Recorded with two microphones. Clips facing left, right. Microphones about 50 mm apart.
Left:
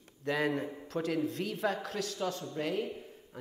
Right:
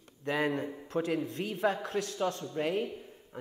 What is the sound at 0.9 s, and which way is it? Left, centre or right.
A man's voice, centre.